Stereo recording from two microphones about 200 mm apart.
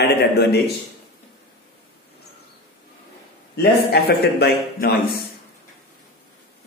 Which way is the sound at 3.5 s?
55° left (ahead or behind).